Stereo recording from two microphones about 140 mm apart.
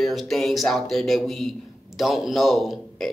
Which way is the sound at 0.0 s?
Centre (ahead or behind).